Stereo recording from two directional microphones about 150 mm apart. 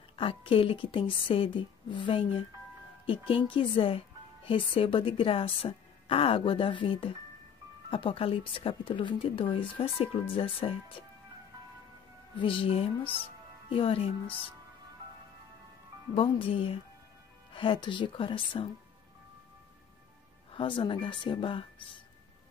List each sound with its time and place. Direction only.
0.1 s speech: 40° left (ahead or behind)
12.4 s speech: 35° left (ahead or behind)
16.2 s speech: 35° left (ahead or behind)
20.5 s speech: 35° left (ahead or behind)